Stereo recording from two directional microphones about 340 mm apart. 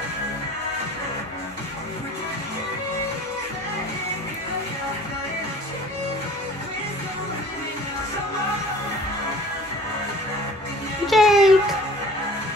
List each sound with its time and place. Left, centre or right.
11.1 s music: centre